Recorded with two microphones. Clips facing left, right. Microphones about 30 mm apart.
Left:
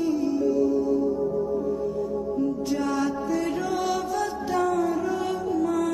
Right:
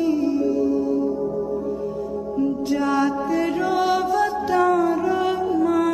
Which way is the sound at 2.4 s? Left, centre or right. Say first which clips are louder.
Right 6 dB; right.